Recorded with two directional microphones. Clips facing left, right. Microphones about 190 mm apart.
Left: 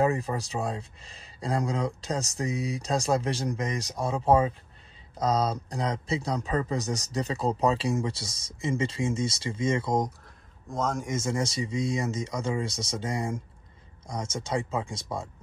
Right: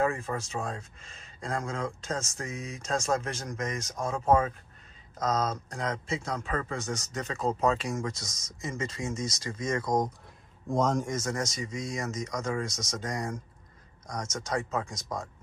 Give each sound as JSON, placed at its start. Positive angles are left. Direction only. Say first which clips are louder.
{"t": 0.4, "sound": "speech", "louder": "left 3 dB", "side_deg": 35}
{"t": 10.7, "sound": "speech", "louder": "right 3 dB", "side_deg": 5}
{"t": 11.1, "sound": "speech", "louder": "left 3 dB", "side_deg": 25}